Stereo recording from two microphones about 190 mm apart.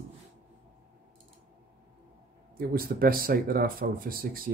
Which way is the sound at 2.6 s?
50° right (ahead or behind).